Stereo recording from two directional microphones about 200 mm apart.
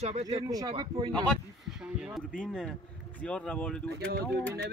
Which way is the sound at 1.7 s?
5° right (ahead or behind).